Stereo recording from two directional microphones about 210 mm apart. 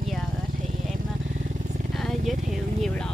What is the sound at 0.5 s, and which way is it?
Vehicle, 40° right (ahead or behind).